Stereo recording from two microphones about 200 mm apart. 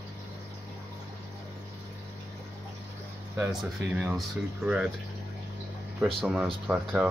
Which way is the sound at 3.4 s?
Centre (ahead or behind).